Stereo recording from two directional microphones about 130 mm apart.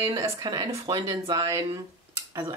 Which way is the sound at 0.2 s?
30° right (ahead or behind).